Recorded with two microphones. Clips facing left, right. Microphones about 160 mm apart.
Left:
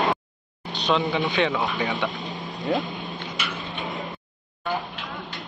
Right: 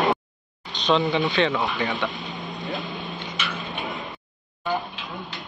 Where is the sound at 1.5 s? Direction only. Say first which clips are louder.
Even; centre (ahead or behind).